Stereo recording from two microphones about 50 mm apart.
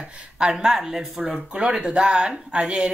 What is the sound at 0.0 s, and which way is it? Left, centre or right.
Speech, centre.